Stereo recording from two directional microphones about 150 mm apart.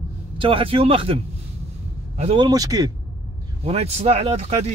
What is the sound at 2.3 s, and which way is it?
Speech, 25° right (ahead or behind).